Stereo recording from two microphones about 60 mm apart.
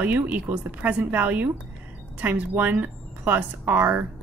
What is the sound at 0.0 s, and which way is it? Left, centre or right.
Speech, right.